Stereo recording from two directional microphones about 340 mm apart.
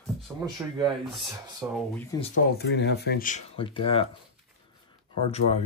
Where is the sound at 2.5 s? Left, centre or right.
Left.